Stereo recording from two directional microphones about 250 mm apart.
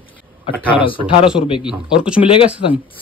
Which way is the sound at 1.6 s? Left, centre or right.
Centre.